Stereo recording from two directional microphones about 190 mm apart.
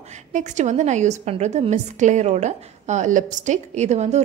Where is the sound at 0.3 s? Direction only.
40° right (ahead or behind).